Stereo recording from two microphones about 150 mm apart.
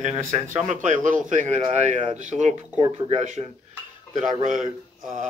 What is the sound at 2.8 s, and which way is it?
A man's voice, 45° right (ahead or behind).